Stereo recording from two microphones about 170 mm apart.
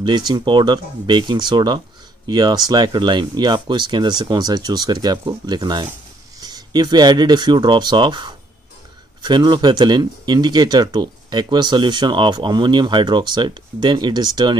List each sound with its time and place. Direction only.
0.0 s speech: 25° right (ahead or behind)